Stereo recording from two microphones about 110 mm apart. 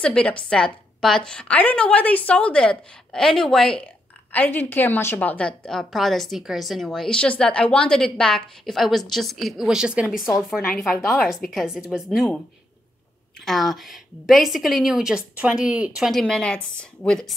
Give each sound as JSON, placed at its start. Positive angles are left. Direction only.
{"t": 0.0, "sound": "a woman's voice", "side_deg": 10}
{"t": 4.3, "sound": "a woman's voice", "side_deg": 15}
{"t": 5.6, "sound": "a woman's voice", "side_deg": 5}
{"t": 13.5, "sound": "a woman's voice", "side_deg": 0}
{"t": 16.1, "sound": "a woman's voice", "side_deg": 5}